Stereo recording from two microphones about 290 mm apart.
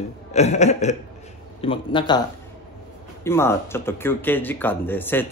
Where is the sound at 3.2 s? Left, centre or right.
Centre.